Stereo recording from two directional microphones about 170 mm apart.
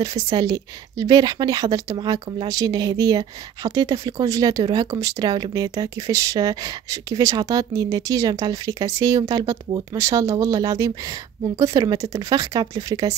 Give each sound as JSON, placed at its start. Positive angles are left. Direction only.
{"t": 0.0, "sound": "speech", "side_deg": -20}